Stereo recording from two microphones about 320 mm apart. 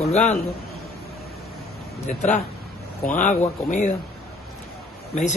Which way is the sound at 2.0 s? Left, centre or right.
Left.